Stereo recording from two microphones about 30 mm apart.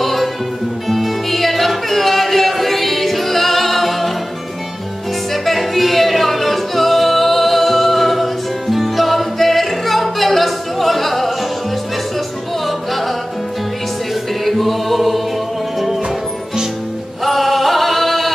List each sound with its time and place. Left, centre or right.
0.0 s music: centre
5.3 s music: centre
12.6 s music: centre
14.4 s choir: centre
17.2 s male singing: centre